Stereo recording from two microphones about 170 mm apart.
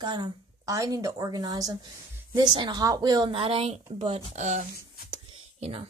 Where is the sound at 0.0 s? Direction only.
25° right (ahead or behind); by 4.6 s 45° right (ahead or behind).